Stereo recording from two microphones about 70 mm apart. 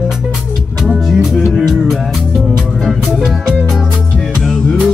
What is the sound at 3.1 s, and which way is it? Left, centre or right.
Music, centre.